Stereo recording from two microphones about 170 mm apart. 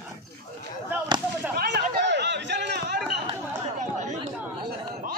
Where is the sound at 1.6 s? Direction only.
80° right.